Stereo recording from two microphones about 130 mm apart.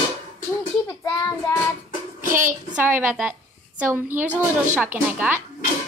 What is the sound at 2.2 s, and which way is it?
Child singing, 90° right.